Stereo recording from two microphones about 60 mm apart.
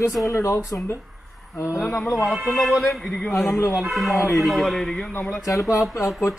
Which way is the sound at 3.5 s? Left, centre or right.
Left.